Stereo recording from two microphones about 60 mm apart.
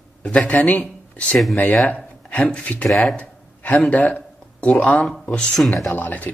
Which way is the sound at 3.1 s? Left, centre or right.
Left.